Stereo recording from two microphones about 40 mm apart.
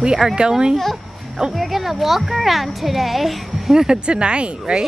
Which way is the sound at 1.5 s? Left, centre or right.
Centre.